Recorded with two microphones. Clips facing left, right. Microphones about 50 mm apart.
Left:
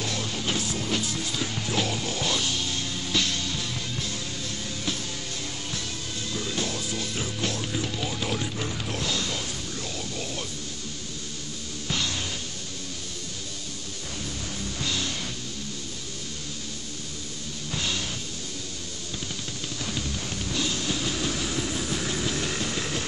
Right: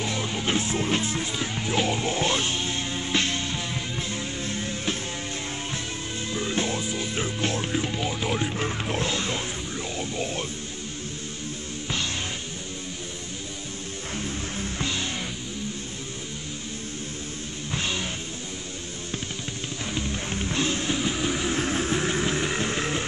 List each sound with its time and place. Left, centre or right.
0.0 s music: right
6.3 s music: right
8.5 s music: right
11.9 s music: right
14.1 s music: right
17.6 s music: right
19.8 s music: right